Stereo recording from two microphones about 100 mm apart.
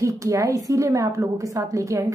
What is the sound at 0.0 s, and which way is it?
A woman's voice, 35° right (ahead or behind).